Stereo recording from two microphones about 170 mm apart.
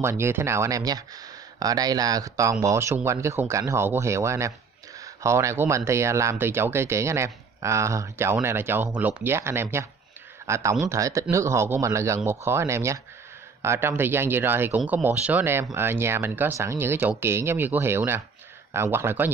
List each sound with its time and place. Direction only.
0.0 s speech: 15° right (ahead or behind)
14.8 s speech: centre (ahead or behind)